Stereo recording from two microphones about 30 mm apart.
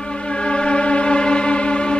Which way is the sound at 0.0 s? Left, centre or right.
Left.